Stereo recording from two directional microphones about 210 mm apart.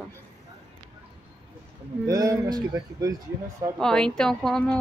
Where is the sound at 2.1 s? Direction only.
15° right (ahead or behind).